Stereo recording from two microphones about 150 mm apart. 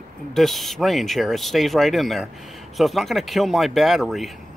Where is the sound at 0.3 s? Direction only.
Centre (ahead or behind).